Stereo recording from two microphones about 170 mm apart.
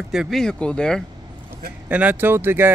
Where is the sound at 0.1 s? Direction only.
Centre (ahead or behind).